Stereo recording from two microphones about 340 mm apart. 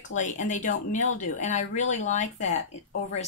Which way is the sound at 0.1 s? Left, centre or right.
Left.